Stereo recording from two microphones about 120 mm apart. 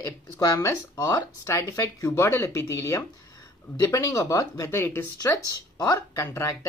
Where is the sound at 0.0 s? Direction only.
30° left (ahead or behind).